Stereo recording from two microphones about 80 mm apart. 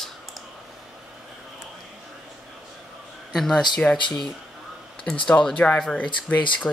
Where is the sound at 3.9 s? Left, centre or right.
Centre.